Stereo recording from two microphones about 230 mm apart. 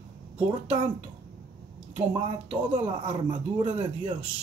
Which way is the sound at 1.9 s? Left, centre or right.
Right.